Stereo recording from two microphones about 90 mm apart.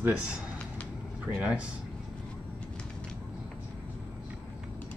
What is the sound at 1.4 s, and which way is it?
Speech, 15° right (ahead or behind).